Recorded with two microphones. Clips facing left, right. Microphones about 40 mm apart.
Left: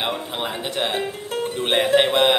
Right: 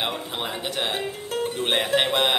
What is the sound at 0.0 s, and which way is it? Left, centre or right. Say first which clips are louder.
Speech: left 3 dB; centre.